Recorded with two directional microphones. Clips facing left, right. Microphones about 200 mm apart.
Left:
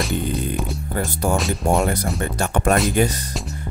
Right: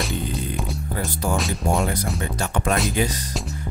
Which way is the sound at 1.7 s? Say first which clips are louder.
Left 4 dB; 50° left (ahead or behind).